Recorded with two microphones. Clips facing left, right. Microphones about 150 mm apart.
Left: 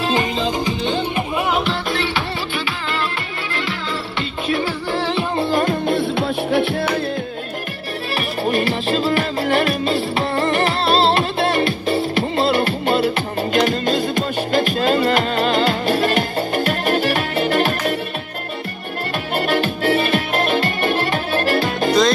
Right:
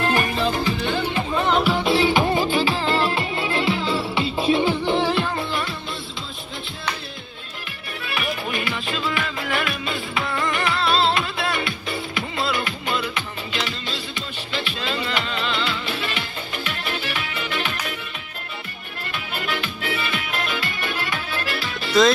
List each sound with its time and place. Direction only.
0.0 s music: 20° left (ahead or behind)
1.6 s music: 10° right (ahead or behind)
2.5 s music: 30° right (ahead or behind)
4.5 s music: 20° right (ahead or behind)
5.4 s music: 45° left (ahead or behind); by 6.9 s 65° left (ahead or behind)
8.2 s music: 40° left (ahead or behind)
19.3 s music: 45° left (ahead or behind)